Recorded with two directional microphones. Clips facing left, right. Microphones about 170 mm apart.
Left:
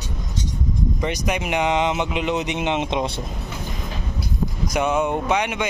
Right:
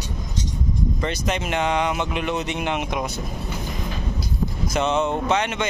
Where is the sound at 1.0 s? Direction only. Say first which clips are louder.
Left 1 dB; 15° left (ahead or behind).